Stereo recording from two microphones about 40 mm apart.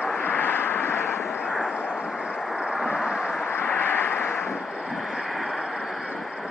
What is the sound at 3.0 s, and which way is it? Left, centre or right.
Vehicle, centre.